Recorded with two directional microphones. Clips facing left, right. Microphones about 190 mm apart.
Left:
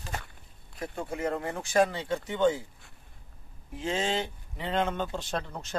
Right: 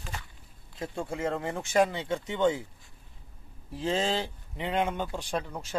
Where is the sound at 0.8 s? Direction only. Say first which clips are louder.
Even; 25° right (ahead or behind).